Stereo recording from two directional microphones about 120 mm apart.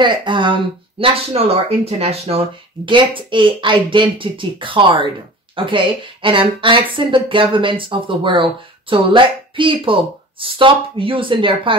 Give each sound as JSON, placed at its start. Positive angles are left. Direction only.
{"t": 0.0, "sound": "speech", "side_deg": -40}